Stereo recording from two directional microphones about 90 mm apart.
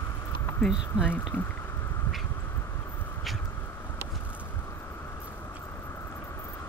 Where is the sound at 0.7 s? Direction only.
10° right (ahead or behind).